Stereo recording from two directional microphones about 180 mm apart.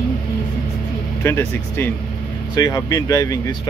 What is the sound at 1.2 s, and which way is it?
Speech, 15° left (ahead or behind).